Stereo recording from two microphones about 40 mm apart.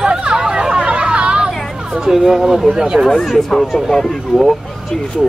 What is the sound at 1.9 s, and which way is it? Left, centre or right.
Speech, centre.